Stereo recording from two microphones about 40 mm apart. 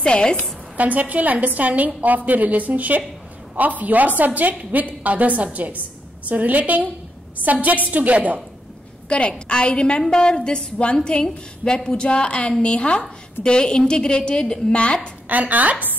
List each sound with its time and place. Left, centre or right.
0.0 s a woman's voice: left
0.7 s a woman's voice: right
9.1 s a woman's voice: left
15.2 s speech: right